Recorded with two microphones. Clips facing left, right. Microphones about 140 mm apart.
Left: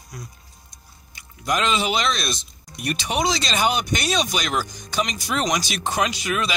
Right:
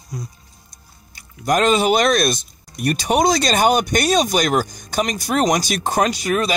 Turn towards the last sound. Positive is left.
turn(degrees=-45)  # may be behind; listen again after turning